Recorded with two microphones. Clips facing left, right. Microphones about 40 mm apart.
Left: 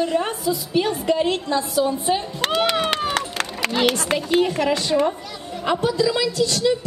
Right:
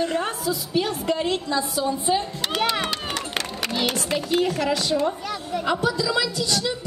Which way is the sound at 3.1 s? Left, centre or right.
Left.